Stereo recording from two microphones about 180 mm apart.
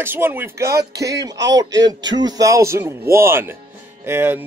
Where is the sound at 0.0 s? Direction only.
10° right (ahead or behind).